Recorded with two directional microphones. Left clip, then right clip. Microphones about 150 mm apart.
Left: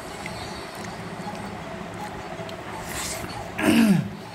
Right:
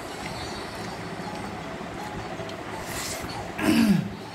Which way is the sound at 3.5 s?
35° left (ahead or behind).